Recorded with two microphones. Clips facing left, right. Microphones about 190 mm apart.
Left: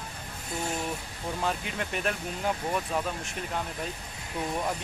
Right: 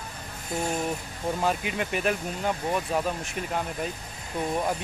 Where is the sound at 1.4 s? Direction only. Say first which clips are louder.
Right 3 dB; 5° right (ahead or behind).